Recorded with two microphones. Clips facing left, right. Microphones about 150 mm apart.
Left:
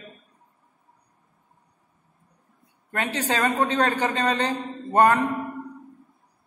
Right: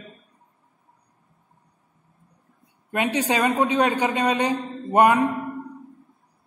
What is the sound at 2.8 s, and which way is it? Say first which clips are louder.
A man's voice: right 4 dB; 15° right (ahead or behind).